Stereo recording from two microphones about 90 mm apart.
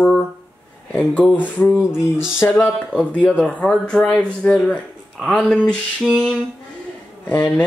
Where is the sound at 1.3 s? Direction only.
20° left (ahead or behind).